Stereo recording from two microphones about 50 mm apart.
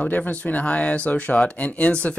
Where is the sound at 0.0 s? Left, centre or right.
Left.